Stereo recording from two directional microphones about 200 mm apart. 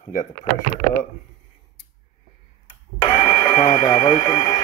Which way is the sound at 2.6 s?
30° left (ahead or behind).